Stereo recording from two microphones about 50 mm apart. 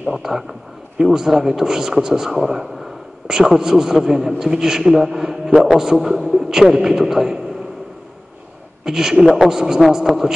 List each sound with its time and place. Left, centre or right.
0.1 s speech: centre
8.8 s a woman's voice: centre